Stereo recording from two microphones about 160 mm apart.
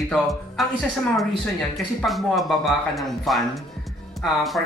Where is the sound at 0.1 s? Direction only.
Centre (ahead or behind).